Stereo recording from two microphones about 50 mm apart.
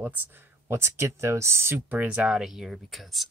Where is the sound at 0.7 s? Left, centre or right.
Right.